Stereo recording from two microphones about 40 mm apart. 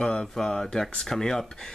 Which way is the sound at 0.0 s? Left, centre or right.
Left.